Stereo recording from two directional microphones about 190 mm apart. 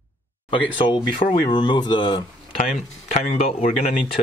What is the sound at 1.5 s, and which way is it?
Speech, 25° left (ahead or behind).